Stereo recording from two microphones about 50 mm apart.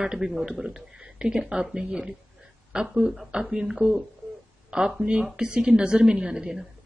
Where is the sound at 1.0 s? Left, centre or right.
Centre.